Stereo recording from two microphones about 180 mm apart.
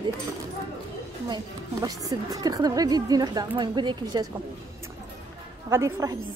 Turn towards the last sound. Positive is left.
turn(degrees=-15)  # may be behind; listen again after turning